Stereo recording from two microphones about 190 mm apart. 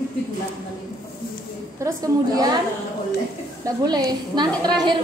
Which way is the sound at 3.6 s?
20° right (ahead or behind).